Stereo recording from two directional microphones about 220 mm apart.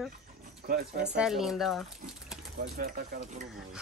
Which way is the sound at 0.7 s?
45° right (ahead or behind).